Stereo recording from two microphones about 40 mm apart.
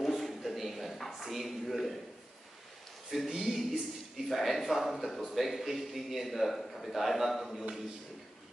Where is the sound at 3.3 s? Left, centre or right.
Centre.